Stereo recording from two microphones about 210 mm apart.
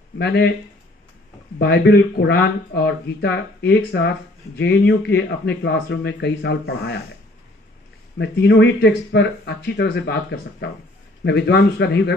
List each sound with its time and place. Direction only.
0.2 s speech: 50° left (ahead or behind)
1.6 s speech: 55° left (ahead or behind)
8.2 s speech: 55° left (ahead or behind)